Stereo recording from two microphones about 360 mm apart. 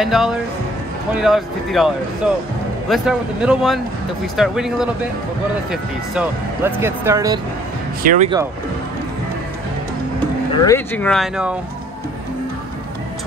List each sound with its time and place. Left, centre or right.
0.0 s speech: centre
2.9 s speech: centre
8.0 s speech: right
10.6 s speech: centre